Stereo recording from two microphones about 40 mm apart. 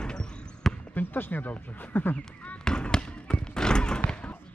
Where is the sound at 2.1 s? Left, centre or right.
Left.